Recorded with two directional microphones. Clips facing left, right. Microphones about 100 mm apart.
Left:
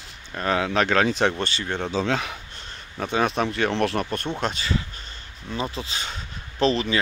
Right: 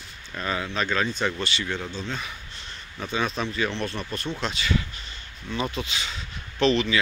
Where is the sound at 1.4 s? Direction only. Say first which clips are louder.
Left 2 dB; 45° left (ahead or behind).